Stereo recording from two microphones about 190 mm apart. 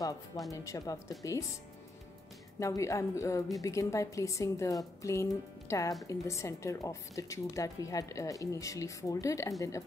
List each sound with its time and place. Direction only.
0.5 s speech: 20° left (ahead or behind)
2.6 s speech: 15° left (ahead or behind)